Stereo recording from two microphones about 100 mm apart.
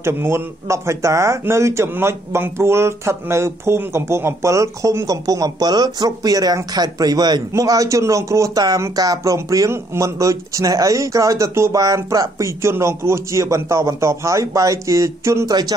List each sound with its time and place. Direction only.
0.0 s speech: 25° right (ahead or behind)